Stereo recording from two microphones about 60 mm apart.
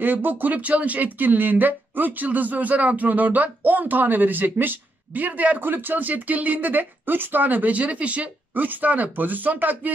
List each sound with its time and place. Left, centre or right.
0.0 s speech: right